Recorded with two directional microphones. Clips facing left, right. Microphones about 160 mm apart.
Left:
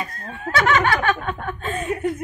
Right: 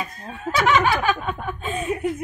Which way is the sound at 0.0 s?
10° right (ahead or behind).